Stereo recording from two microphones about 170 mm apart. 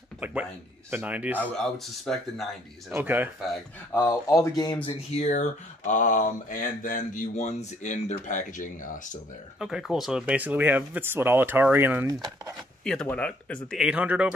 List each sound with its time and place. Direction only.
0.2 s speech: 10° right (ahead or behind)
1.4 s speech: 5° left (ahead or behind)
2.9 s speech: 10° right (ahead or behind)
3.9 s speech: 15° left (ahead or behind)
4.8 s speech: 40° left (ahead or behind)
9.6 s speech: 5° right (ahead or behind)
12.8 s speech: 5° left (ahead or behind)
13.7 s speech: 5° right (ahead or behind)